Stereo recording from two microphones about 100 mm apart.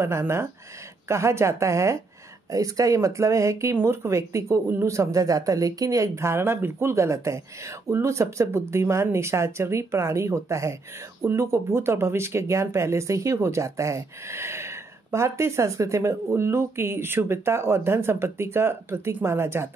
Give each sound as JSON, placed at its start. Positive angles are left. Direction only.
{"t": 0.0, "sound": "speech", "side_deg": -25}